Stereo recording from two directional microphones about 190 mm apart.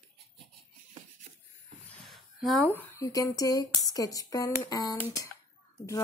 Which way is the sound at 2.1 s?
Centre (ahead or behind).